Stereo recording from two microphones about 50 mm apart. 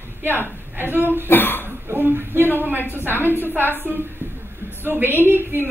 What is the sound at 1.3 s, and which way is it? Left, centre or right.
Speech, left.